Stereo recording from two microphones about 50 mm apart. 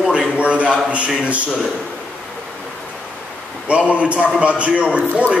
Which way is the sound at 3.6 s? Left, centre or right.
Right.